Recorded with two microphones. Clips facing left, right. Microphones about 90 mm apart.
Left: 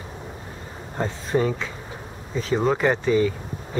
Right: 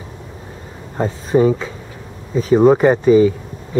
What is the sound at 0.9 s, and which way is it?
Speech, 10° right (ahead or behind).